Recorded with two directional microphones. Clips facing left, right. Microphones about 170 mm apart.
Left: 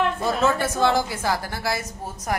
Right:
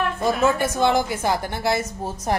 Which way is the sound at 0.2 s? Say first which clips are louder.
Right 2 dB; 15° right (ahead or behind).